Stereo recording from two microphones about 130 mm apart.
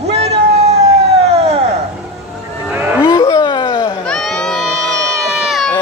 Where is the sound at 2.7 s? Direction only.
15° right (ahead or behind).